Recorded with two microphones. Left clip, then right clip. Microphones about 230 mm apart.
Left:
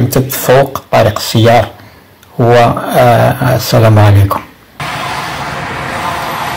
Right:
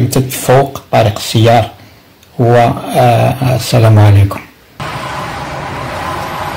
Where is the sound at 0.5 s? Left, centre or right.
Centre.